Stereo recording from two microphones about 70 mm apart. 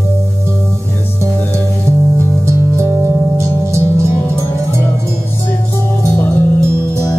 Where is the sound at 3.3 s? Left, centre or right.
Right.